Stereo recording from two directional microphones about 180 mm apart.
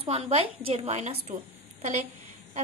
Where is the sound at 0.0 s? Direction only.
35° right (ahead or behind).